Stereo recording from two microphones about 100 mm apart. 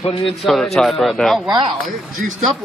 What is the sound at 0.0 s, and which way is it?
Speech, 60° left (ahead or behind).